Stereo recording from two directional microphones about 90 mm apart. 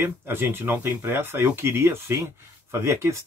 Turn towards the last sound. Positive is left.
turn(degrees=-35)  # may be behind; listen again after turning